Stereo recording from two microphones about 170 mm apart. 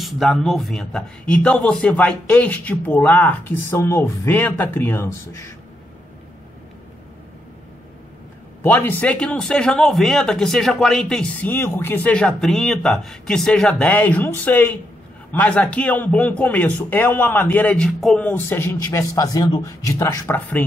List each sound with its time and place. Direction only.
0.0 s a man's voice: centre (ahead or behind); by 5.5 s 15° left (ahead or behind)
8.6 s a man's voice: 10° left (ahead or behind)
18.3 s a man's voice: 15° left (ahead or behind)
20.3 s a man's voice: 5° left (ahead or behind)